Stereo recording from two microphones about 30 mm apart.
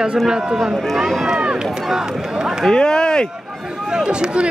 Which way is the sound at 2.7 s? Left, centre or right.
Left.